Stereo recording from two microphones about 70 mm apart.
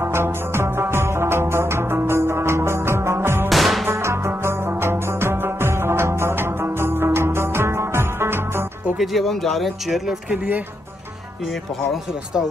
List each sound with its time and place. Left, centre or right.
0.0 s music: right
3.4 s music: centre
3.8 s music: right
8.9 s speech: centre
11.9 s speech: centre